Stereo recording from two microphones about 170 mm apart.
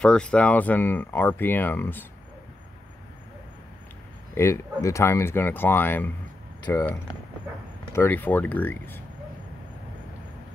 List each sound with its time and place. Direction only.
0.0 s speech: 5° left (ahead or behind)
4.4 s speech: 15° left (ahead or behind)